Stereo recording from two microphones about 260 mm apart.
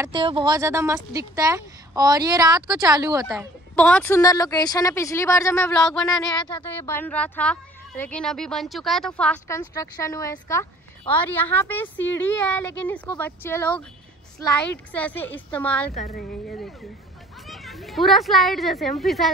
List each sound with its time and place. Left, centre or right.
0.0 s speech: centre
3.3 s speech: centre
6.3 s speech: centre
14.9 s a child's voice: centre
15.9 s a woman's voice: left
16.2 s speech: left
16.5 s a child's voice: centre